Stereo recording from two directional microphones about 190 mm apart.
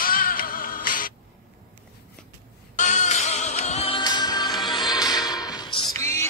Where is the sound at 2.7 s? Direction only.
40° left (ahead or behind).